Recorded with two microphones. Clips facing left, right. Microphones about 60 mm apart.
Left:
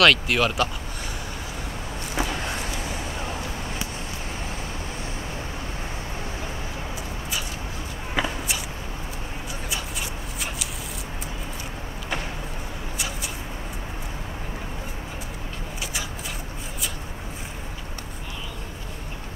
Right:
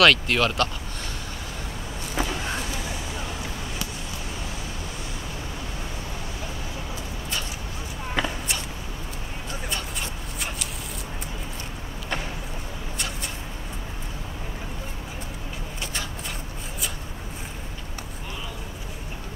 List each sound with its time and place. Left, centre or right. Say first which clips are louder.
0.0 s speech: even; centre
2.2 s vehicle: even; centre
2.8 s vehicle: left 2 dB; left
8.1 s a sound: left 1 dB; centre